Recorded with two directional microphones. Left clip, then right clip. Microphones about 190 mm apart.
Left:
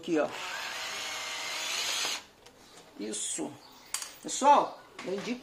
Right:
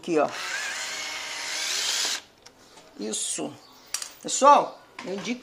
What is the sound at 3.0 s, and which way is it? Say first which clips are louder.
A woman's voice: right 5 dB; 45° right (ahead or behind).